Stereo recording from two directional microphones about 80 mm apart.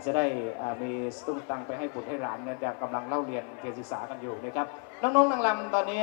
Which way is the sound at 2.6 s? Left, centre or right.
Centre.